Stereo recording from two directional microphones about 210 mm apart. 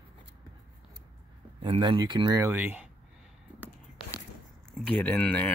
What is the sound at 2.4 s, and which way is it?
Speech, 10° right (ahead or behind).